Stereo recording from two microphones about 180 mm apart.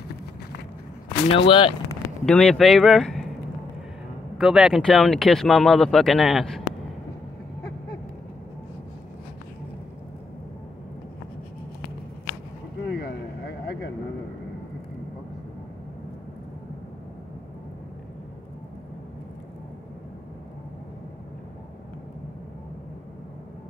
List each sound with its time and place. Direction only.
1.0 s speech: 30° left (ahead or behind)
2.2 s speech: 5° left (ahead or behind)
4.4 s speech: 5° right (ahead or behind)